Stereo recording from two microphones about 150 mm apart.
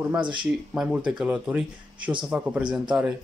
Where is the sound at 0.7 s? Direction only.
5° right (ahead or behind).